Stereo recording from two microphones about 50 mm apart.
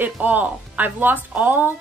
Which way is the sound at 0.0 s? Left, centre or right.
Right.